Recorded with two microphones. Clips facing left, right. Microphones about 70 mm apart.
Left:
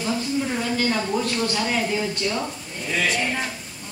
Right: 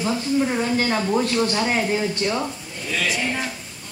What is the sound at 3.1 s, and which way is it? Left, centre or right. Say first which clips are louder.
Speech: even; centre.